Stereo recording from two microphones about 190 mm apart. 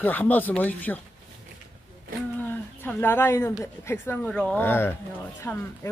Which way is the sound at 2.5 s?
10° left (ahead or behind).